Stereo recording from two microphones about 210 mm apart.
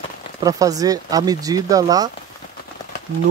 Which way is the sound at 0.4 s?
15° right (ahead or behind).